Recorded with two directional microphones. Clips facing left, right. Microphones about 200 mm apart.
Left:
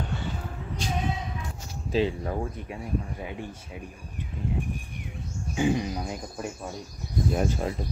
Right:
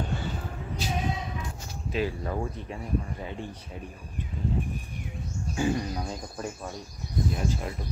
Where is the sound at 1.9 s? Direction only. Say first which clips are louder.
Left 4 dB; 25° left (ahead or behind).